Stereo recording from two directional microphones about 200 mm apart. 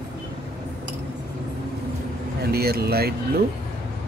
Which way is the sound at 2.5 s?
50° right (ahead or behind).